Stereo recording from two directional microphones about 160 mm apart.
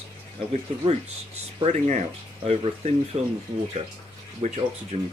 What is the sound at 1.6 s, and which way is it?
Speech, 45° right (ahead or behind).